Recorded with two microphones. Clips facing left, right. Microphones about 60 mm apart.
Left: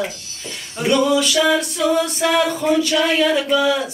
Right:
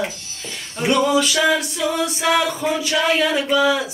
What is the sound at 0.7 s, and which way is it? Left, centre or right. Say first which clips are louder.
A capella: left 1 dB; centre.